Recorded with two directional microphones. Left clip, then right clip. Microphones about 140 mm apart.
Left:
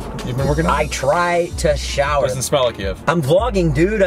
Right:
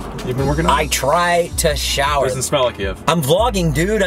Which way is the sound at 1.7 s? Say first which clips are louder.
Right 1 dB; 15° right (ahead or behind).